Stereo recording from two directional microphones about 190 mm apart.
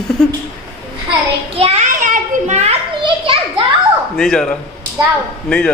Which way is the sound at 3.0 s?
30° right (ahead or behind).